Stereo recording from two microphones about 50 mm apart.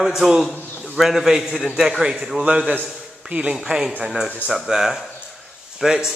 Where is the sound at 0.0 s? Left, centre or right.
Centre; by 3.5 s right.